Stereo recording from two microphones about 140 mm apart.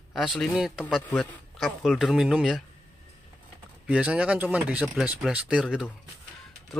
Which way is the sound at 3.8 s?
10° right (ahead or behind).